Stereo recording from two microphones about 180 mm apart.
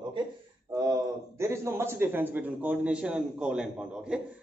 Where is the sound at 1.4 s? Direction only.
15° right (ahead or behind).